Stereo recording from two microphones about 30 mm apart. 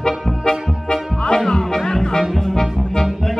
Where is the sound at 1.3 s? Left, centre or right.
Centre.